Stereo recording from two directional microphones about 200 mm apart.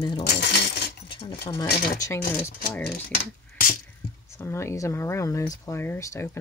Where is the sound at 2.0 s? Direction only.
15° left (ahead or behind).